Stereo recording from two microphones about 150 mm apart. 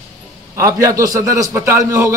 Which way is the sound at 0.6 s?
20° right (ahead or behind).